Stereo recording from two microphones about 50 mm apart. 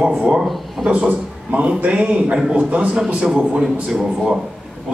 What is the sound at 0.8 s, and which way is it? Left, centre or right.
A man's voice, right.